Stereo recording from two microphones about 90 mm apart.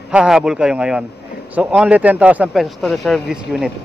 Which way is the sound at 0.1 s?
5° right (ahead or behind).